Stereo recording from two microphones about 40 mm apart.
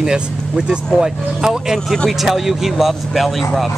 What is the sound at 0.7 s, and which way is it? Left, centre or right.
Speech, centre.